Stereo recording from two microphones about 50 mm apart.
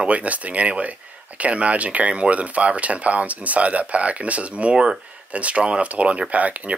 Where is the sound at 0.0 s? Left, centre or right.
Right.